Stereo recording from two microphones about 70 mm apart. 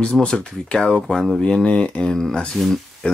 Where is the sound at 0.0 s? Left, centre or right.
Centre.